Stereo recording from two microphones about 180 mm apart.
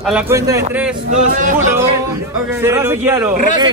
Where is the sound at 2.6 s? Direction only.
15° right (ahead or behind).